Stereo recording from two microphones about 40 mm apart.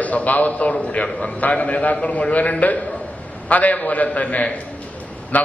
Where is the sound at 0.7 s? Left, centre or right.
Left.